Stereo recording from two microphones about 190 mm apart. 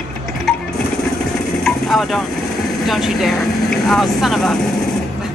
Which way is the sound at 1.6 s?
Centre (ahead or behind).